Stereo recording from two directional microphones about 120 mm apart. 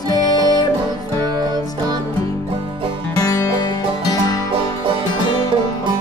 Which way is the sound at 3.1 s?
30° left (ahead or behind).